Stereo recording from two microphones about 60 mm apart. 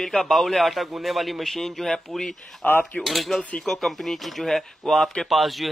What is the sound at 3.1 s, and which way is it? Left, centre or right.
Speech, centre.